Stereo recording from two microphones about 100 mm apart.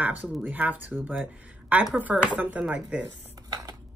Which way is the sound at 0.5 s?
15° right (ahead or behind).